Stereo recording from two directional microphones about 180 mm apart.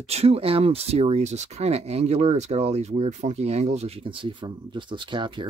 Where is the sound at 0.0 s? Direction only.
35° right (ahead or behind).